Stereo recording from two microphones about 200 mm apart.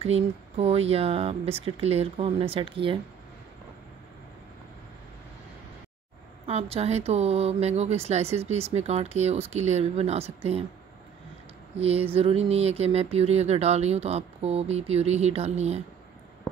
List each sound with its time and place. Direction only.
0.0 s speech: 30° right (ahead or behind)
6.4 s speech: 30° right (ahead or behind)
12.1 s speech: 30° right (ahead or behind)